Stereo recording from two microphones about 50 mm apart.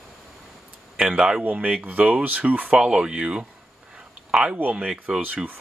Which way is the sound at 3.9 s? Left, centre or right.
Centre.